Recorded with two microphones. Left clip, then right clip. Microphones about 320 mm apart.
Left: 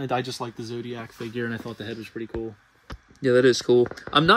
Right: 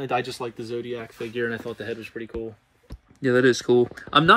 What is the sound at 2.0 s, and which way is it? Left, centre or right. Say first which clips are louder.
Speech: even; centre.